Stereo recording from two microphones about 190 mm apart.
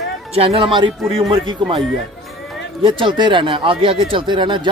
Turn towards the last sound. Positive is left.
turn(degrees=-25)  # may be behind; listen again after turning